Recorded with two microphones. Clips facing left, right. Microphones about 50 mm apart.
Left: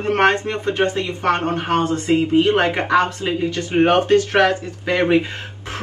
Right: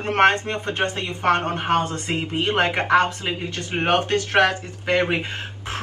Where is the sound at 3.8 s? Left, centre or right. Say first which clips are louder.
Left 5 dB; left.